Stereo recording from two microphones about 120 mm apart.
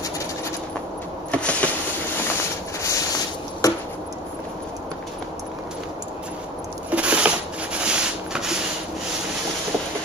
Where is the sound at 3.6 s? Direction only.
30° left (ahead or behind).